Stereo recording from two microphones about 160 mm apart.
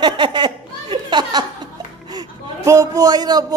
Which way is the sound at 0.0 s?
30° right (ahead or behind).